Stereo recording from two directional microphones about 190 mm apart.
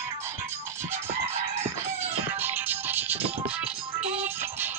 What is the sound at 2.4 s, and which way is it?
Music, 10° right (ahead or behind).